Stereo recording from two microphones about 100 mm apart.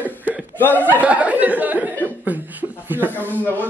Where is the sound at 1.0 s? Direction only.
15° right (ahead or behind).